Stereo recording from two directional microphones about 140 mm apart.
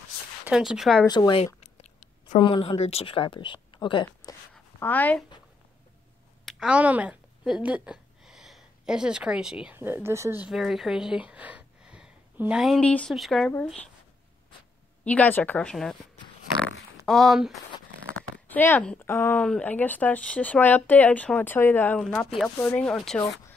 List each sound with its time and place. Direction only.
0.5 s speech: 5° right (ahead or behind)
1.0 s speech: 30° left (ahead or behind)
1.4 s a sound: 50° left (ahead or behind)
2.3 s speech: 35° left (ahead or behind)
4.7 s speech: 15° left (ahead or behind)
6.4 s a woman's voice: 5° right (ahead or behind)
10.4 s speech: 5° right (ahead or behind)
15.0 s speech: 10° left (ahead or behind)
16.6 s a sound: centre (ahead or behind)
18.1 s speech: 15° left (ahead or behind)
22.8 s speech: 5° left (ahead or behind)